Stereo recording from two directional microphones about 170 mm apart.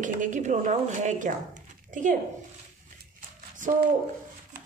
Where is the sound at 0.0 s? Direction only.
50° right (ahead or behind).